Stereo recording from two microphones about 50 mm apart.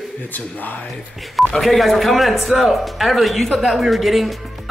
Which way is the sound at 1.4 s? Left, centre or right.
Centre.